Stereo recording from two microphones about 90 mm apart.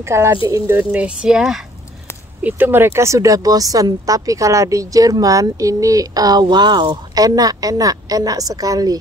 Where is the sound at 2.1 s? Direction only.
30° left (ahead or behind).